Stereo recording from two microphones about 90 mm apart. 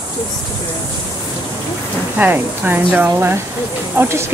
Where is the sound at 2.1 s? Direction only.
20° right (ahead or behind).